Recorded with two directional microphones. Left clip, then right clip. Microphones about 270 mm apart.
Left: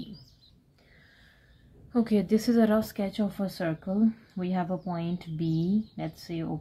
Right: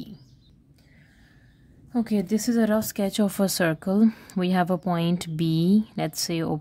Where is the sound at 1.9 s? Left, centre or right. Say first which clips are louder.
Even; centre.